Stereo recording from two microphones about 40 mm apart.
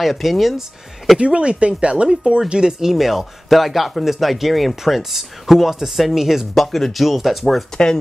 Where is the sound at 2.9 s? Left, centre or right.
Centre.